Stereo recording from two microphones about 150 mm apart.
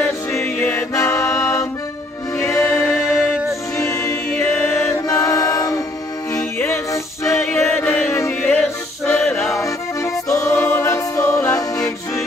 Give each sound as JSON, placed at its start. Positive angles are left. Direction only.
{"t": 0.4, "sound": "music", "side_deg": 10}
{"t": 4.4, "sound": "music", "side_deg": 5}
{"t": 5.0, "sound": "music", "side_deg": 20}
{"t": 9.6, "sound": "accordion", "side_deg": 20}
{"t": 10.2, "sound": "music", "side_deg": 20}
{"t": 10.6, "sound": "choir", "side_deg": 15}
{"t": 11.3, "sound": "music", "side_deg": 20}